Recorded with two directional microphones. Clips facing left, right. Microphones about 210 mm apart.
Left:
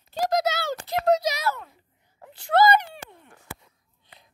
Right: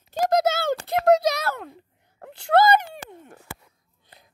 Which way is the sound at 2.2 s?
65° right (ahead or behind).